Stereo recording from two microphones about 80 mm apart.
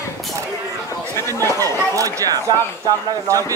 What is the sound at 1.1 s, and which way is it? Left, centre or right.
Chatter, left.